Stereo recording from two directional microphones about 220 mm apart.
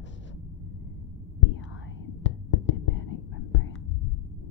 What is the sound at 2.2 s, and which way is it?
Whispering, 60° left (ahead or behind).